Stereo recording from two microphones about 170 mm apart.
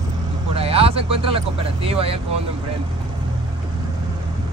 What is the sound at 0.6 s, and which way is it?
Speech, 35° right (ahead or behind).